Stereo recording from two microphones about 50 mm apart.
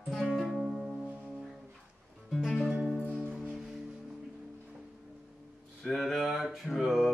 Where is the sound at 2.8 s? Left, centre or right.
Centre.